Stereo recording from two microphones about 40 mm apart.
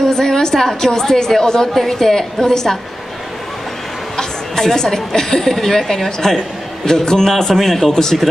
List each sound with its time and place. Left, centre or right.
0.0 s a woman's voice: centre
4.2 s a woman's voice: centre
6.2 s a woman's voice: centre